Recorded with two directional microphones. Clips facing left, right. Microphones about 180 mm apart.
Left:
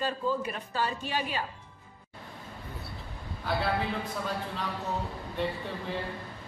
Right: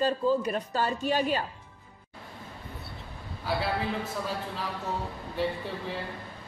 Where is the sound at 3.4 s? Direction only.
5° right (ahead or behind).